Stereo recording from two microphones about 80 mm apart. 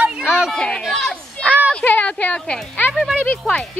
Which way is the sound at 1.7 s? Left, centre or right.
Centre.